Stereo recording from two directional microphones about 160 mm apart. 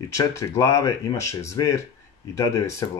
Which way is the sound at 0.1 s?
20° left (ahead or behind).